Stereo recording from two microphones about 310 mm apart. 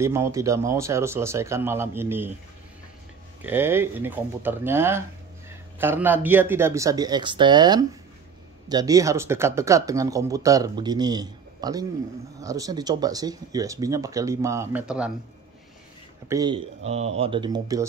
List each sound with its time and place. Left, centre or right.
0.0 s speech: centre
3.4 s speech: centre
16.3 s speech: centre